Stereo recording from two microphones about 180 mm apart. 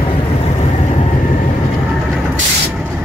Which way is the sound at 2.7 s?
5° right (ahead or behind).